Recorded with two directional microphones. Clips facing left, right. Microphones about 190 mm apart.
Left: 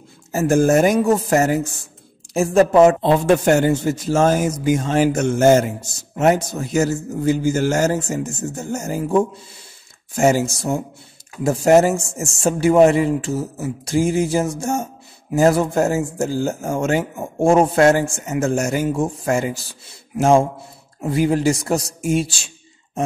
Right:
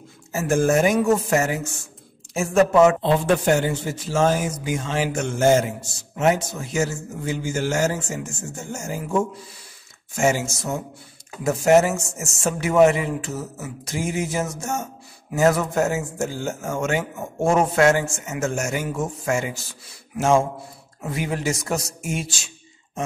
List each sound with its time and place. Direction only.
0.3 s speech: 40° left (ahead or behind)
3.0 s speech: 45° left (ahead or behind)